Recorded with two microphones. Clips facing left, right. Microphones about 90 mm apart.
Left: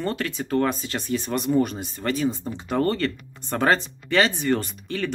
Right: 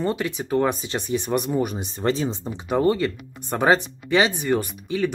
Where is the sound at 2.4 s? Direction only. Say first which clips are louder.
Right 3 dB; 10° right (ahead or behind).